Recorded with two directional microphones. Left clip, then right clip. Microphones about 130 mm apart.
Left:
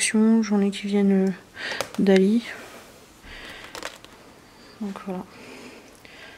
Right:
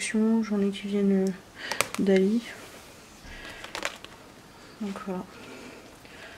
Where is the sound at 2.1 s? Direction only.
35° left (ahead or behind).